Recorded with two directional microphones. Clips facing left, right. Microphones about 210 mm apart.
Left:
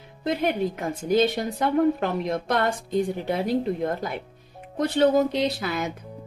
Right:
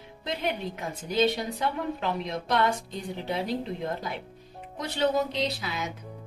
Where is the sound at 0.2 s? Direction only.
50° left (ahead or behind).